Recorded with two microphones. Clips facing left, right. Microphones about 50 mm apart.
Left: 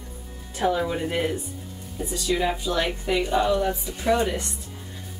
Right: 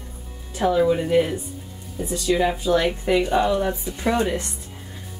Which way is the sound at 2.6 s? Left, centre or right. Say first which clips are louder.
Right 5 dB; right.